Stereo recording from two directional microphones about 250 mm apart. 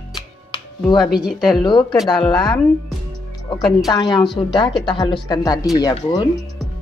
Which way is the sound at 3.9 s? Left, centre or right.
Centre.